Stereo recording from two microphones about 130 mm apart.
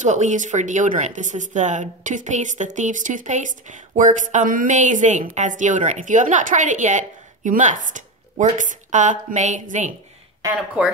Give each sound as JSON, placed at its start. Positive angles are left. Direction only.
{"t": 0.0, "sound": "speech", "side_deg": -65}
{"t": 10.8, "sound": "speech", "side_deg": -10}